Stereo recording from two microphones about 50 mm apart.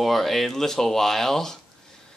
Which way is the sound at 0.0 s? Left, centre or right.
Centre.